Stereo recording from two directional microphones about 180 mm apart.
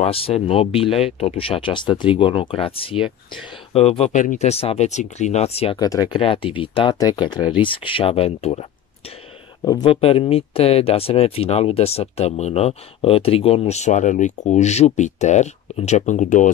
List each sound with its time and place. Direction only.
0.0 s speech: 30° left (ahead or behind)
5.8 s speech: 20° left (ahead or behind)
9.7 s speech: 20° left (ahead or behind); by 16.5 s 45° left (ahead or behind)